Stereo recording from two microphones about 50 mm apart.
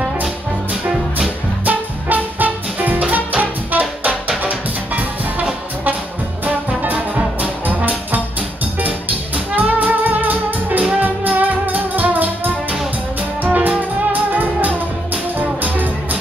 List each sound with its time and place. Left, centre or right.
1.7 s music: right
13.4 s music: right